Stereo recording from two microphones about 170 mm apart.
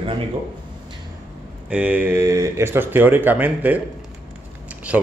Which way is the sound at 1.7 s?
5° right (ahead or behind).